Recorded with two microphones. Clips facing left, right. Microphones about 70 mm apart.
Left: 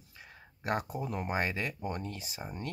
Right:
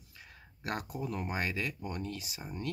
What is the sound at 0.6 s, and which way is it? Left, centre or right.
Speech, left.